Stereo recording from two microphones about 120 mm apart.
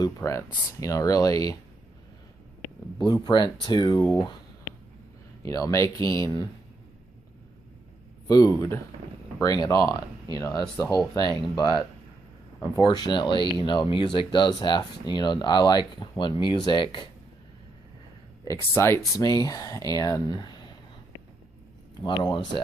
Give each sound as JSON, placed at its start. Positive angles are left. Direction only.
{"t": 0.0, "sound": "speech", "side_deg": 25}
{"t": 3.1, "sound": "speech", "side_deg": 40}
{"t": 4.0, "sound": "speech", "side_deg": 5}
{"t": 5.4, "sound": "speech", "side_deg": 30}
{"t": 8.3, "sound": "speech", "side_deg": 35}
{"t": 12.8, "sound": "speech", "side_deg": 40}
{"t": 18.8, "sound": "speech", "side_deg": 25}
{"t": 22.0, "sound": "speech", "side_deg": 40}